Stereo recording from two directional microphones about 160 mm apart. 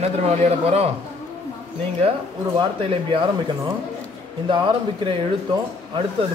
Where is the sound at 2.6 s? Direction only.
35° right (ahead or behind).